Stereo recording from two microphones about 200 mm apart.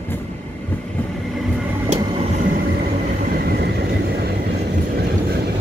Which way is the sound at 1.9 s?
35° right (ahead or behind).